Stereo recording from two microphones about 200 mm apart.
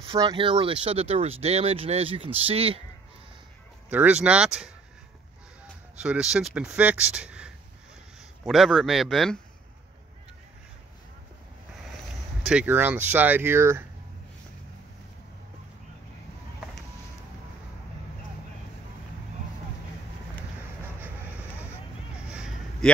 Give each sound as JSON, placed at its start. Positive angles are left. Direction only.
{"t": 0.0, "sound": "speech", "side_deg": -20}
{"t": 3.9, "sound": "speech", "side_deg": -5}
{"t": 5.9, "sound": "speech", "side_deg": -5}
{"t": 12.4, "sound": "speech", "side_deg": -5}
{"t": 21.0, "sound": "vehicle", "side_deg": -10}
{"t": 22.3, "sound": "a sound", "side_deg": -5}